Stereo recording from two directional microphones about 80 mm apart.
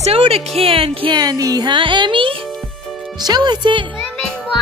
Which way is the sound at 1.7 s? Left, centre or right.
Right.